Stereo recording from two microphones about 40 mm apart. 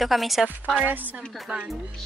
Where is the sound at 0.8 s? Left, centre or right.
Right.